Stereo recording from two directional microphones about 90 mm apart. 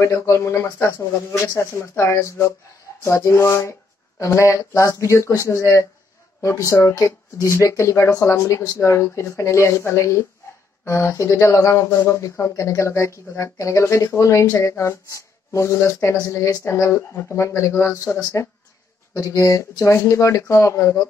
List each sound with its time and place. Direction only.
0.0 s speech: 35° left (ahead or behind)